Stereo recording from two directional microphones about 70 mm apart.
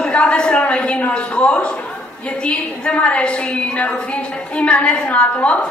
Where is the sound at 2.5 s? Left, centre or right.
Centre.